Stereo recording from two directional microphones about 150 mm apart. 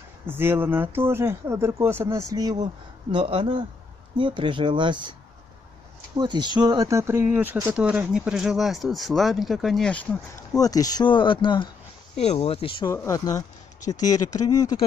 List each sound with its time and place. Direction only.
0.3 s speech: 15° right (ahead or behind); by 5.1 s 30° right (ahead or behind)
6.1 s speech: 30° right (ahead or behind); by 10.0 s 5° left (ahead or behind)
10.6 s speech: 25° left (ahead or behind)
12.2 s speech: 45° left (ahead or behind)
12.8 s speech: 20° left (ahead or behind)